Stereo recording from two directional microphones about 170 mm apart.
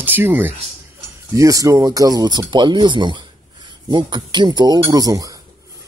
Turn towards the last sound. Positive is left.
turn(degrees=-20)  # may be behind; listen again after turning